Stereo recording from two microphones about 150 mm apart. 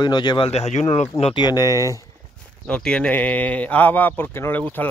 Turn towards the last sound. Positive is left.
turn(degrees=10)  # may be behind; listen again after turning